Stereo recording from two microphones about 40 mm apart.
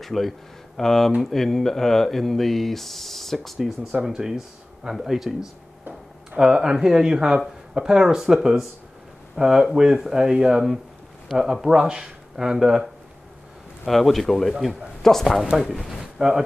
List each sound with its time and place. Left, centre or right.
0.0 s speech: centre
3.9 s speech: centre
6.3 s speech: centre
13.8 s speech: centre
15.5 s speech: centre
16.2 s speech: centre